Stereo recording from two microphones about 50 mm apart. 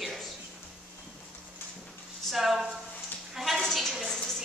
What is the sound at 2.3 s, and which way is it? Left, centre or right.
Speech, centre.